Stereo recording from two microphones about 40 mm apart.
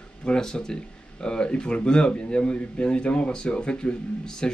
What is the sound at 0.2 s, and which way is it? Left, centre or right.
Speech, left.